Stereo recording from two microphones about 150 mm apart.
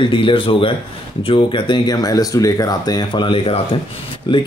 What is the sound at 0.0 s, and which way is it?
Speech, 35° left (ahead or behind).